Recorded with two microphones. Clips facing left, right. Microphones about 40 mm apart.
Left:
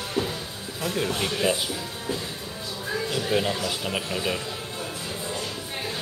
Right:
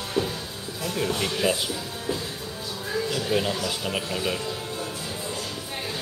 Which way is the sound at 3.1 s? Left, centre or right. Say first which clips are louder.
Left 1 dB; centre.